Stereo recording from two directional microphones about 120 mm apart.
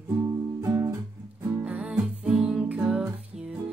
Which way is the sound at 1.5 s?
10° right (ahead or behind).